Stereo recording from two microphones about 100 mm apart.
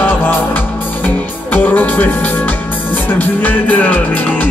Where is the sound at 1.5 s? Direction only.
15° left (ahead or behind).